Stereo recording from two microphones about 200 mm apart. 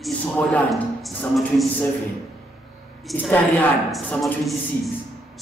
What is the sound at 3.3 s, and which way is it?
A woman's voice, 5° left (ahead or behind).